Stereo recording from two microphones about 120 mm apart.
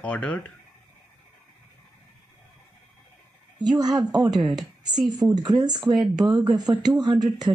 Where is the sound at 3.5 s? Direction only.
35° right (ahead or behind).